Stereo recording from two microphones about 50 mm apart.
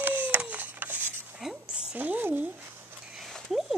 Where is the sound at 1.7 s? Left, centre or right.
Centre.